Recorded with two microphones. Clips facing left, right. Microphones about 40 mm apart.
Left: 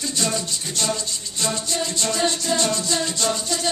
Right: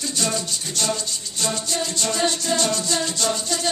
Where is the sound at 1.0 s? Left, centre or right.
Left.